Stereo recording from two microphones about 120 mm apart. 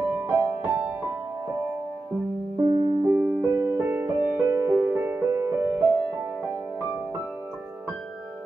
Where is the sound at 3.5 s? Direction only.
25° right (ahead or behind).